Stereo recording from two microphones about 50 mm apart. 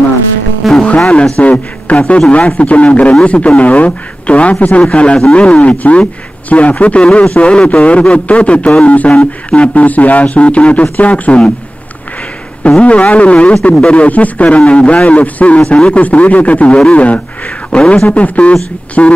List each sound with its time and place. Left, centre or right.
0.7 s music: centre
1.4 s speech: left
12.8 s speech: left
14.0 s a man's voice: left
18.1 s speech: left